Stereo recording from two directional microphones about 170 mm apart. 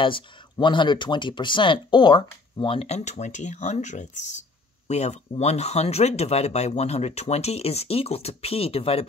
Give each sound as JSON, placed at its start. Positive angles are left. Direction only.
{"t": 0.0, "sound": "speech", "side_deg": 30}